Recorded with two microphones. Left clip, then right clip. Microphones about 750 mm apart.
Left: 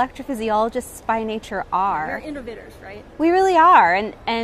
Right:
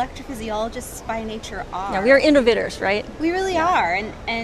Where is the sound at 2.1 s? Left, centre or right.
Right.